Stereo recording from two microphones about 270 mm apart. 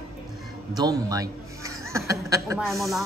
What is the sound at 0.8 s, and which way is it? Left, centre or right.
A man's voice, centre.